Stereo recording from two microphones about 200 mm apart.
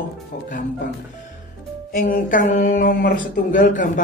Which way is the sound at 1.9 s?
40° left (ahead or behind).